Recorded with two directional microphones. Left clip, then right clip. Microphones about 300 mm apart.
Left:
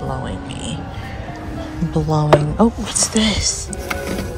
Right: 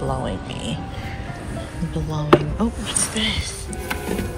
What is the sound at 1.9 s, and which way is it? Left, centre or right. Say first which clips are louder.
Speech: left 3 dB; centre.